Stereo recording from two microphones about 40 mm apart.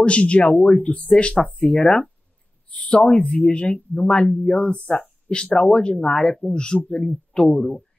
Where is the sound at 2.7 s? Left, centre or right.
Left; by 6.5 s centre.